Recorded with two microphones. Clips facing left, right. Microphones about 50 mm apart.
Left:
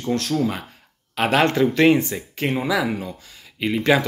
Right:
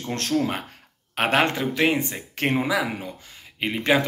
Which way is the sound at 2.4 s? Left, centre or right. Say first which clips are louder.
Even; right.